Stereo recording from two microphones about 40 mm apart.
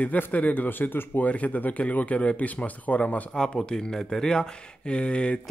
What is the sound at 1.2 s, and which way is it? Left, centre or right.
Speech, left.